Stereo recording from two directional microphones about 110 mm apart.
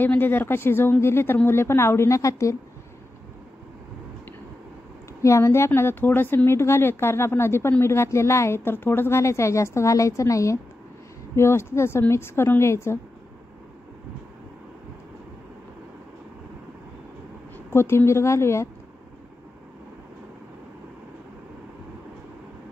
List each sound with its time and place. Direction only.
0.0 s speech: 20° left (ahead or behind)
5.2 s speech: 25° left (ahead or behind)
17.6 s speech: 20° left (ahead or behind)